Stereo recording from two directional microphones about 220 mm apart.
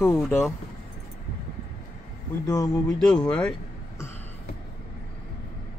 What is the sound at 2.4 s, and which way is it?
Speech, 15° left (ahead or behind).